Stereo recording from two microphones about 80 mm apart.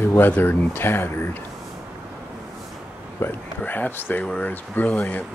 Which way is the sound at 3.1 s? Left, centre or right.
Left.